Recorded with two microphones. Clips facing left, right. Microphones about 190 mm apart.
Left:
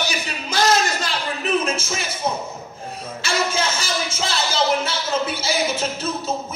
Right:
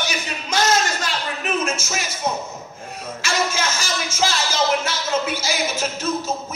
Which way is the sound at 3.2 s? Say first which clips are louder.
Left 1 dB; 30° left (ahead or behind).